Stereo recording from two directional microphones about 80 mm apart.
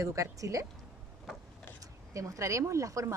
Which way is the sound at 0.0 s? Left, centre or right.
Right.